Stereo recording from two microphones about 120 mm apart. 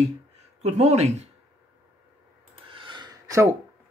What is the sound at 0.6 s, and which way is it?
Speech, 70° right (ahead or behind).